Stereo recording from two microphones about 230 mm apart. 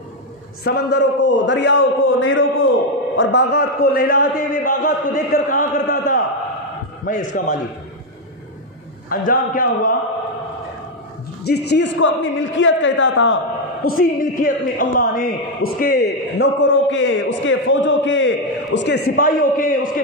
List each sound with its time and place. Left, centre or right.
0.7 s a man's voice: left
9.1 s a man's voice: left
11.4 s a man's voice: left
13.8 s a man's voice: left